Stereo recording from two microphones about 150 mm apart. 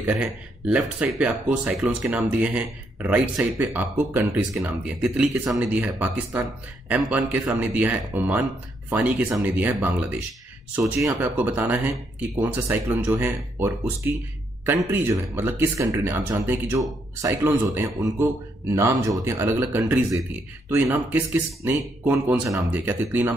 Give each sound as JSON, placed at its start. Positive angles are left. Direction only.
{"t": 0.0, "sound": "speech", "side_deg": -10}